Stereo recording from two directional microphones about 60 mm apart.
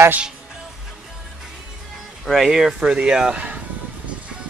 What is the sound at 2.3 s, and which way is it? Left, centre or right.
Speech, centre.